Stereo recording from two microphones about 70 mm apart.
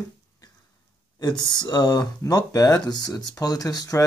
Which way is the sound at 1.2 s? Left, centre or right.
Left.